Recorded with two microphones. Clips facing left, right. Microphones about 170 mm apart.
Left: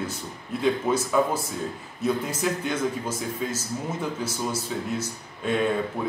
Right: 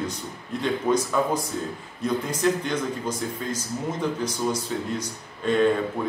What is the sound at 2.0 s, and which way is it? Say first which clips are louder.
Speech: right 2 dB; 5° left (ahead or behind).